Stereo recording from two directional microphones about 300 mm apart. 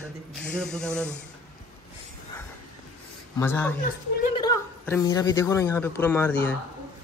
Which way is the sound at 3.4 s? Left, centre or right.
Centre.